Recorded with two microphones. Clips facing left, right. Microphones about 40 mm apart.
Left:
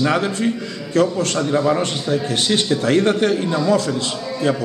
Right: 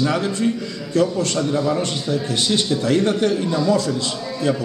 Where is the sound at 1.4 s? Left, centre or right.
Left.